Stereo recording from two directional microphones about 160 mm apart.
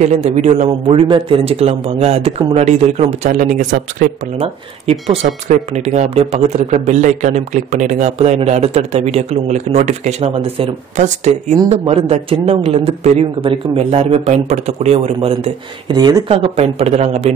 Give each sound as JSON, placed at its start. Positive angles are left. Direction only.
{"t": 0.0, "sound": "a man's voice", "side_deg": -45}
{"t": 5.1, "sound": "a man's voice", "side_deg": -45}
{"t": 16.3, "sound": "a man's voice", "side_deg": -35}